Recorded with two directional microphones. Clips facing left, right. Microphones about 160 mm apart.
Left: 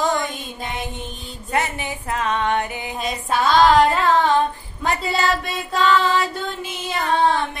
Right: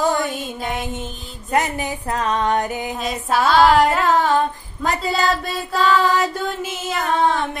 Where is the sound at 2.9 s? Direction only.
Centre (ahead or behind).